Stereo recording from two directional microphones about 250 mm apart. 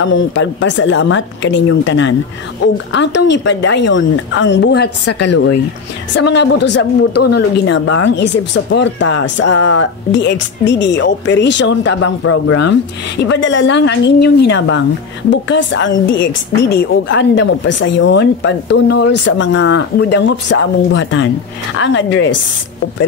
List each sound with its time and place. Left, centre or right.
0.0 s speech: left
6.1 s speech: left